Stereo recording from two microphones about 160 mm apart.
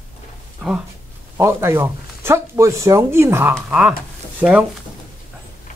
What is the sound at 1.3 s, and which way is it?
Speech, 15° right (ahead or behind).